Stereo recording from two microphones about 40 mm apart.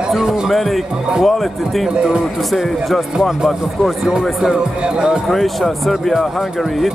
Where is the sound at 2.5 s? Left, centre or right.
Centre.